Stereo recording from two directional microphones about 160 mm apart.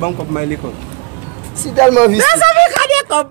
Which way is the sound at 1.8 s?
20° left (ahead or behind).